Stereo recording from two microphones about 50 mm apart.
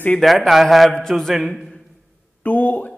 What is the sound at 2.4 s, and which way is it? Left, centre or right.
Speech, left.